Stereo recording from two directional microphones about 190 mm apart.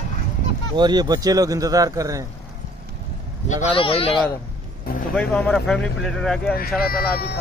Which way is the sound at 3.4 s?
30° left (ahead or behind).